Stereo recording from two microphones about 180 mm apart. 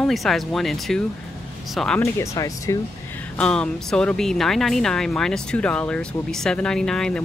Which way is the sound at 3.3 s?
5° left (ahead or behind).